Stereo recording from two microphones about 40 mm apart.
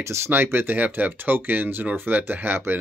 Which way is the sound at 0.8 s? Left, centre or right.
Right.